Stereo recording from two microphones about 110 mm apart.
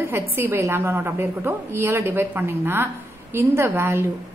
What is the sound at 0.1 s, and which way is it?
A woman's voice, 20° right (ahead or behind).